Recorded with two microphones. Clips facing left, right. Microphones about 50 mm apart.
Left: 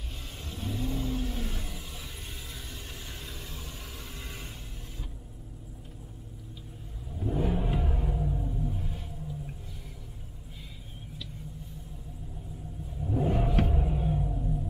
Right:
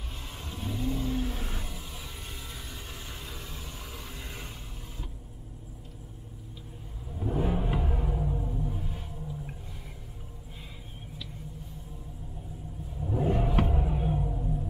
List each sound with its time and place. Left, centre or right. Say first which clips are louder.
0.4 s vehicle: even; centre
3.3 s vehicle: right 1 dB; centre
7.2 s music: even; centre
13.0 s a sound: even; centre
14.1 s music: even; centre